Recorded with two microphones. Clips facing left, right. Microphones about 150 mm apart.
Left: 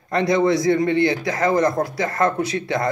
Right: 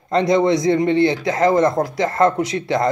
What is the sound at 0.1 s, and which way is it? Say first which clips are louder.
Speech: right 2 dB; 20° right (ahead or behind).